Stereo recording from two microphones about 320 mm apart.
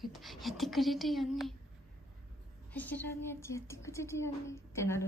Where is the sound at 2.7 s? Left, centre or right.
Centre.